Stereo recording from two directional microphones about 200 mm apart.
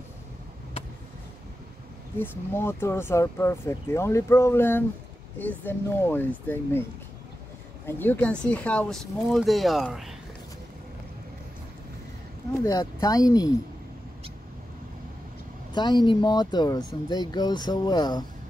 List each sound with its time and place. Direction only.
2.1 s speech: 10° left (ahead or behind)
7.8 s speech: 10° left (ahead or behind)
12.6 s speech: 20° left (ahead or behind)
15.7 s speech: 20° left (ahead or behind)